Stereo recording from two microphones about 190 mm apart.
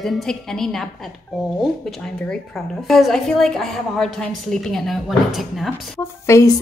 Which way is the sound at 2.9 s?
Centre (ahead or behind).